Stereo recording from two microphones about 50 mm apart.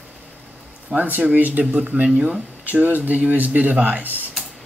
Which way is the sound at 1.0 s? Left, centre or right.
Right.